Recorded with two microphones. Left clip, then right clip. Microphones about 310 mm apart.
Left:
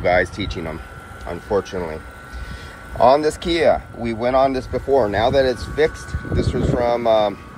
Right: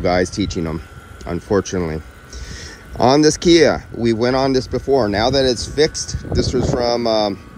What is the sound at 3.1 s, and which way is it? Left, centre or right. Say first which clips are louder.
Speech: right 5 dB; right.